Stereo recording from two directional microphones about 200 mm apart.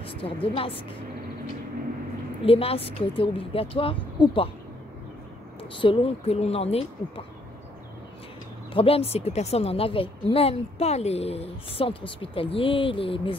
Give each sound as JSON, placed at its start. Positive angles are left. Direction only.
{"t": 0.0, "sound": "a woman's voice", "side_deg": 25}
{"t": 2.4, "sound": "speech", "side_deg": 30}
{"t": 5.6, "sound": "speech", "side_deg": 25}
{"t": 8.7, "sound": "speech", "side_deg": 30}